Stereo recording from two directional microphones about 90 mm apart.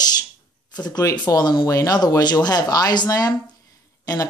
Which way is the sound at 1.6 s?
40° left (ahead or behind).